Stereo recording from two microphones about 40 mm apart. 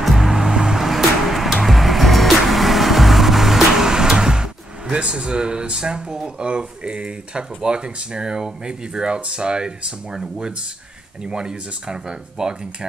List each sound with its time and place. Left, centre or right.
0.0 s vehicle: centre
0.3 s vehicle: centre
0.8 s music: centre
11.2 s speech: right